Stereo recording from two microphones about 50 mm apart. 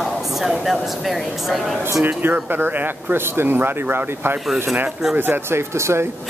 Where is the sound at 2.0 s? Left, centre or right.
Right.